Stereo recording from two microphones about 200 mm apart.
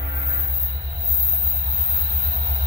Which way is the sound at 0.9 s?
30° right (ahead or behind).